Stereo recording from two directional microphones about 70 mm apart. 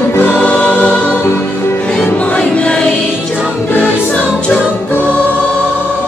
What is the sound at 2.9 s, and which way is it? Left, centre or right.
Music, centre.